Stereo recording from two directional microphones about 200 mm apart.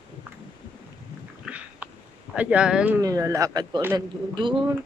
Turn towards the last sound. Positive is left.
turn(degrees=-20)  # may be behind; listen again after turning